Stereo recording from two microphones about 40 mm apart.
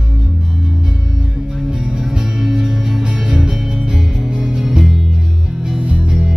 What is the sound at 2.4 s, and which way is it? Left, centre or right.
Music, centre.